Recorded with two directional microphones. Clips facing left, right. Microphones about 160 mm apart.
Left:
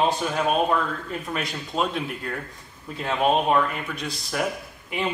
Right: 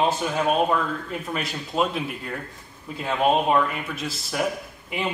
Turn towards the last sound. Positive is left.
turn(degrees=-5)  # may be behind; listen again after turning